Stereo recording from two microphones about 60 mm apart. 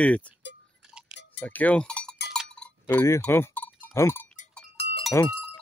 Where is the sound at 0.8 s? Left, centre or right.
Centre.